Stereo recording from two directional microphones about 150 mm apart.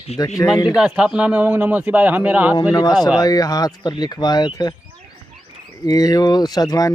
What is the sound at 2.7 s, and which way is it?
Speech, 25° left (ahead or behind).